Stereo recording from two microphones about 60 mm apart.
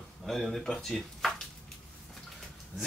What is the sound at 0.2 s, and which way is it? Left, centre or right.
Speech, centre.